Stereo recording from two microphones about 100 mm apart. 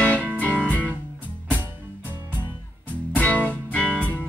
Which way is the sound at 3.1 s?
15° left (ahead or behind).